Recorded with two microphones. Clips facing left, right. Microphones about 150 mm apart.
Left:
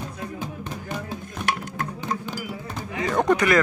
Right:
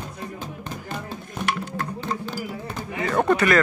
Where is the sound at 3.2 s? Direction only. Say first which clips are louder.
Even; 15° left (ahead or behind).